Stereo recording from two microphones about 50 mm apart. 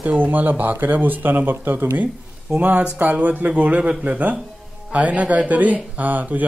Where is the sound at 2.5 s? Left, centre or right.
Centre.